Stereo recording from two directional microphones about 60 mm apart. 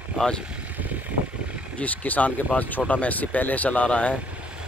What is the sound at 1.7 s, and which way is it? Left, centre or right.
Speech, left.